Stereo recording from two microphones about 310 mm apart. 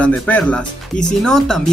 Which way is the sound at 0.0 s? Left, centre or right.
Centre.